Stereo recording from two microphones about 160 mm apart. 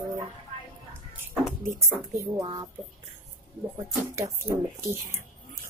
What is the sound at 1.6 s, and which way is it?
Speech, 20° right (ahead or behind).